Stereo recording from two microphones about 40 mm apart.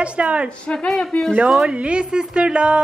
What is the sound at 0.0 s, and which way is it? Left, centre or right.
Speech, right.